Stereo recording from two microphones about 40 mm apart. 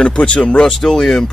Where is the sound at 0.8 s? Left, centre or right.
Centre.